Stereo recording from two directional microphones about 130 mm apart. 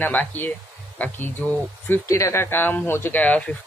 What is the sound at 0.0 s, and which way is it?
Speech, 10° left (ahead or behind).